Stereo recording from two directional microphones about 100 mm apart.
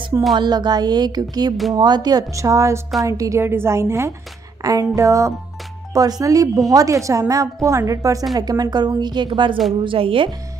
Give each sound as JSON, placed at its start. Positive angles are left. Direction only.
{"t": 0.4, "sound": "speech", "side_deg": -45}
{"t": 2.3, "sound": "a woman's voice", "side_deg": -30}
{"t": 4.6, "sound": "a sound", "side_deg": -35}
{"t": 4.9, "sound": "a woman's voice", "side_deg": -35}